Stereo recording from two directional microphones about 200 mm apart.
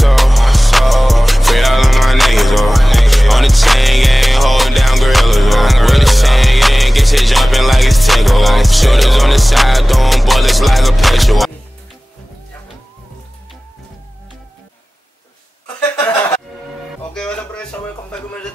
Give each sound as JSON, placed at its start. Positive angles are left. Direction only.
{"t": 0.0, "sound": "music", "side_deg": 0}
{"t": 16.0, "sound": "music", "side_deg": 20}
{"t": 17.1, "sound": "music", "side_deg": 5}